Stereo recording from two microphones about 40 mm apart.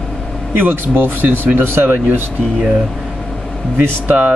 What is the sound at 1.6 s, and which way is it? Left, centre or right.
Speech, right.